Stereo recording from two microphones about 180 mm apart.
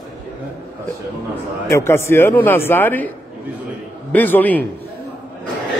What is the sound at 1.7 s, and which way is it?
A man's voice, 15° left (ahead or behind).